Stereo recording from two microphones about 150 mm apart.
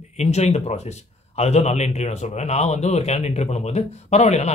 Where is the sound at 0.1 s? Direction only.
45° left (ahead or behind).